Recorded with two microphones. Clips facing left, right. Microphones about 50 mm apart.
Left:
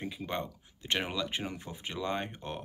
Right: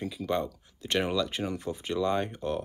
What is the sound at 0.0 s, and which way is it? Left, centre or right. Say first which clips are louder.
Speech: right 6 dB; left.